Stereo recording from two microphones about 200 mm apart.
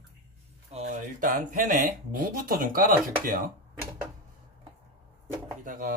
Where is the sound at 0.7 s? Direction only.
45° right (ahead or behind).